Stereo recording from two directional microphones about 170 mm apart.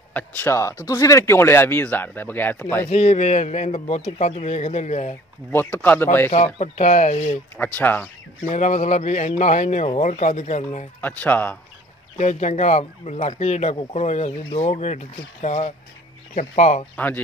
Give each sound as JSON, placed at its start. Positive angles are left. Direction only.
{"t": 0.1, "sound": "speech", "side_deg": 15}
{"t": 2.9, "sound": "speech", "side_deg": 40}
{"t": 5.5, "sound": "speech", "side_deg": 15}
{"t": 6.3, "sound": "a man's voice", "side_deg": 40}
{"t": 7.5, "sound": "speech", "side_deg": 10}
{"t": 8.5, "sound": "a man's voice", "side_deg": 45}
{"t": 11.0, "sound": "speech", "side_deg": 10}
{"t": 12.2, "sound": "a man's voice", "side_deg": 45}
{"t": 16.9, "sound": "speech", "side_deg": 10}